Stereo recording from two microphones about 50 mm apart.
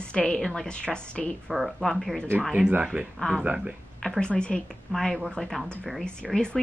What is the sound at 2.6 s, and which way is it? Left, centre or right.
Speech, right.